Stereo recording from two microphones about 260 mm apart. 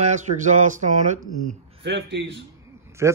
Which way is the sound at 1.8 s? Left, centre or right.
Right.